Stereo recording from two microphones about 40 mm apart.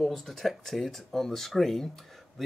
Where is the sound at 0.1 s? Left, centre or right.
Centre.